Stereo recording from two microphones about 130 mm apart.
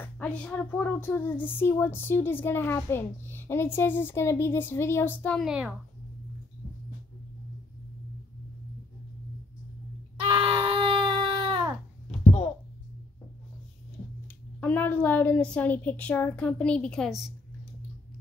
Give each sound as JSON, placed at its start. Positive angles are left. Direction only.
{"t": 0.0, "sound": "speech", "side_deg": 10}
{"t": 5.4, "sound": "speech", "side_deg": -5}
{"t": 10.2, "sound": "baby cry", "side_deg": -45}
{"t": 14.6, "sound": "a woman's voice", "side_deg": 15}